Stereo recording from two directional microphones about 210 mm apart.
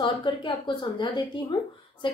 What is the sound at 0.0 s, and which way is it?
A woman's voice, 20° left (ahead or behind).